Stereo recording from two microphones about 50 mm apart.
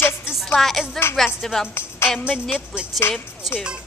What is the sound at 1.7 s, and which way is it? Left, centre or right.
Speech, left.